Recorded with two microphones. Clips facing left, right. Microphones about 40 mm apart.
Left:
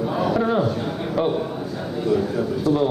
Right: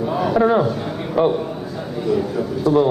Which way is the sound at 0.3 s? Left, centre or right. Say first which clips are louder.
Right 6 dB; centre.